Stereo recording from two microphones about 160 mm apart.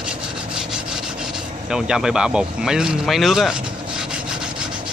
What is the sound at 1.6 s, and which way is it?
Speech, 5° right (ahead or behind).